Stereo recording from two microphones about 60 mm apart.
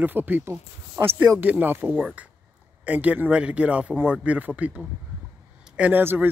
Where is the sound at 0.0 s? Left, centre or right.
Right.